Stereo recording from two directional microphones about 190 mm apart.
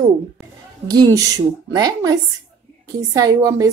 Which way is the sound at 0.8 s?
20° right (ahead or behind).